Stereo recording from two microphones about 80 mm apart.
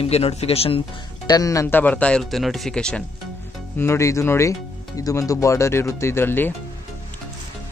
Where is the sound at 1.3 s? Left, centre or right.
Left.